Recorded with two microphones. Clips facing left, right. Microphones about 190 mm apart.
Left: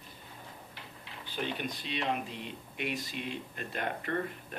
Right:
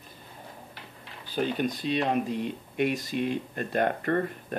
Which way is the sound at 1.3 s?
40° right (ahead or behind).